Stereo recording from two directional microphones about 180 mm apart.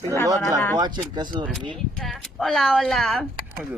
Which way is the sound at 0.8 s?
25° right (ahead or behind).